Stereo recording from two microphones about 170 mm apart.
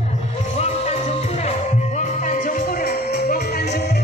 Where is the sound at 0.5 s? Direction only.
40° left (ahead or behind); by 3.0 s 55° left (ahead or behind).